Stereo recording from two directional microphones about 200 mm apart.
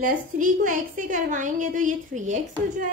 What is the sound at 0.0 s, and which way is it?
A woman's voice, 40° right (ahead or behind).